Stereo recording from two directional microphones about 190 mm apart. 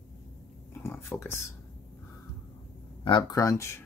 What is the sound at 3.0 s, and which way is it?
Speech, 25° left (ahead or behind).